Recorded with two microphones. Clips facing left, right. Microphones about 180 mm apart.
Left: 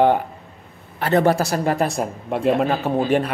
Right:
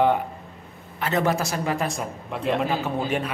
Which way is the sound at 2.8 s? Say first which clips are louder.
Left 7 dB; 40° left (ahead or behind).